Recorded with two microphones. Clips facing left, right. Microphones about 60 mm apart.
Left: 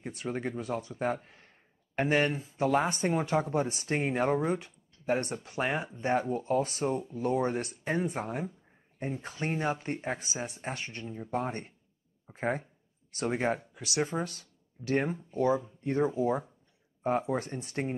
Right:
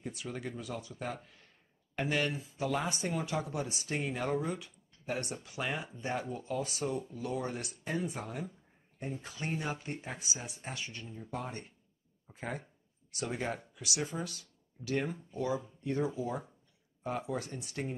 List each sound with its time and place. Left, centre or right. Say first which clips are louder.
0.0 s speech: left 6 dB; left